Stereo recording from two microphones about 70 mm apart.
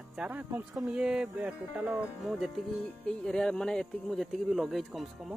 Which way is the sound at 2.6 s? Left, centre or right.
Centre.